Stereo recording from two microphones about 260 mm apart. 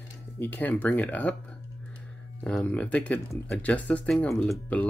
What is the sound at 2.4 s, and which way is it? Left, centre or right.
Speech, centre.